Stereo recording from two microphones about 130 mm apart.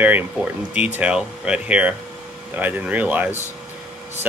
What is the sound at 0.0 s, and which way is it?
Speech, 15° right (ahead or behind).